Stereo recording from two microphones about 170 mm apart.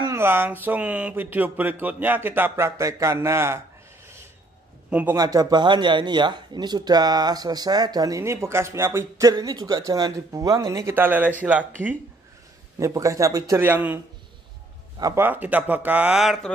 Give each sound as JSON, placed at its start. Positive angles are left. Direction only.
{"t": 0.0, "sound": "speech", "side_deg": -15}
{"t": 4.8, "sound": "a sound", "side_deg": -10}
{"t": 5.1, "sound": "speech", "side_deg": -20}
{"t": 15.0, "sound": "speech", "side_deg": -15}